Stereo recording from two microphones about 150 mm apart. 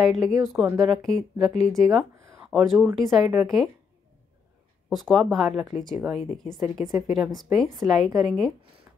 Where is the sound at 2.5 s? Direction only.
Centre (ahead or behind).